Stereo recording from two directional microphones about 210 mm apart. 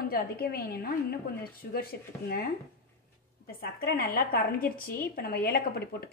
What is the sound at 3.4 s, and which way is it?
A woman's voice, 45° left (ahead or behind).